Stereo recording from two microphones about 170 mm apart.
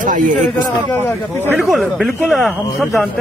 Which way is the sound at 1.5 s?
Centre (ahead or behind).